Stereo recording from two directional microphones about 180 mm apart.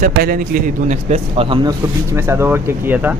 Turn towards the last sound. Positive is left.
turn(degrees=-10)  # may be behind; listen again after turning